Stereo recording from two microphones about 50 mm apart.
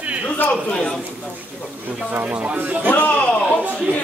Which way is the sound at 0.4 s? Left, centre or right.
Left.